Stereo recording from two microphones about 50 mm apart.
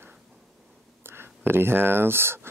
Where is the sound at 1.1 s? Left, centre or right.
Right.